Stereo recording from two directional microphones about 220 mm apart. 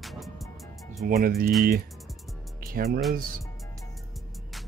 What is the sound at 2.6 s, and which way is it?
Music, 45° right (ahead or behind).